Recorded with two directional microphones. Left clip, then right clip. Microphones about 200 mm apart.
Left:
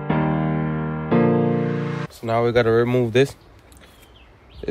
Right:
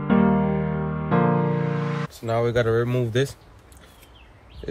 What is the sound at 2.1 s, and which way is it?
Speech, 45° left (ahead or behind).